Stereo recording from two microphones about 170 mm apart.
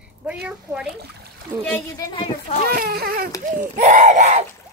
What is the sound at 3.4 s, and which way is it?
Speech, 50° right (ahead or behind).